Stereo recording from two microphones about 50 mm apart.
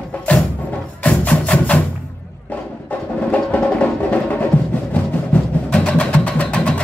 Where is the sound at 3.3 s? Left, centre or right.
Left.